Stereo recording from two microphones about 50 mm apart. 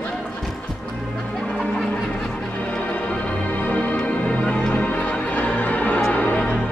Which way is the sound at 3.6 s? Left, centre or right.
Left.